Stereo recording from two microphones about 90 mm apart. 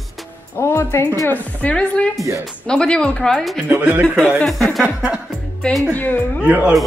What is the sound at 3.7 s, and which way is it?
Speech, 20° right (ahead or behind).